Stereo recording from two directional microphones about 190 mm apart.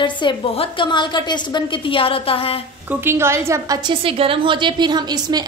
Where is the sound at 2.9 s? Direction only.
10° right (ahead or behind).